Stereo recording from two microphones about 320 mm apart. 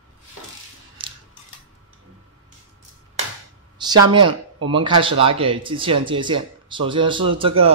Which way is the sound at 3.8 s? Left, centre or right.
Centre.